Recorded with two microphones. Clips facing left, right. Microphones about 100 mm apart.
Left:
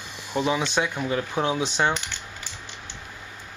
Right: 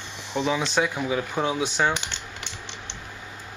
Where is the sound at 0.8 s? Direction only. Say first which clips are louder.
Right 1 dB; 5° right (ahead or behind).